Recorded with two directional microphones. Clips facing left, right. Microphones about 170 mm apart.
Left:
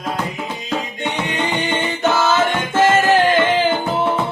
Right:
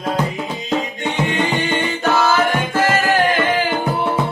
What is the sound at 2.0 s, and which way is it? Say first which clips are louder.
Music: even; 25° left (ahead or behind).